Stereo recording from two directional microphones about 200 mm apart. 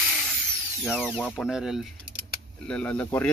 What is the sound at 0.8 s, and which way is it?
Speech, centre (ahead or behind).